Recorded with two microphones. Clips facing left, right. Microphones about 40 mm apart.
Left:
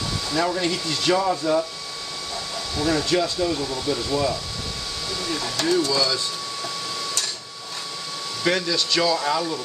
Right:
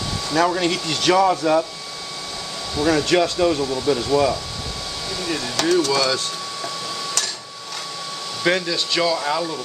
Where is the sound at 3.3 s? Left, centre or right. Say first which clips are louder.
Right 5 dB; right.